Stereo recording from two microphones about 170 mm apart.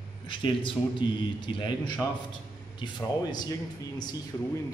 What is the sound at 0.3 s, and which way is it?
A man's voice, 30° left (ahead or behind).